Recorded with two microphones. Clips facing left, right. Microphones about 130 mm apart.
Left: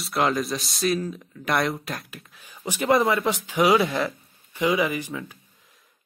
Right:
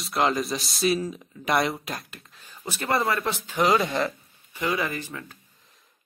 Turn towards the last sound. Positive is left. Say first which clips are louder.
# left 4 dB
turn(degrees=15)  # may be behind; listen again after turning